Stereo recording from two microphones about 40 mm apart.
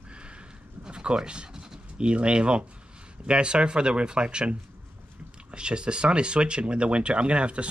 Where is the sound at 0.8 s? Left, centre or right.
Right.